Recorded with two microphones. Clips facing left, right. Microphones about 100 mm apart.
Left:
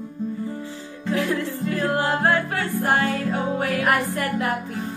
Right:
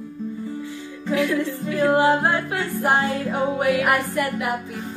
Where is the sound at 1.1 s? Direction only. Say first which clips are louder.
Right 2 dB; 35° left (ahead or behind).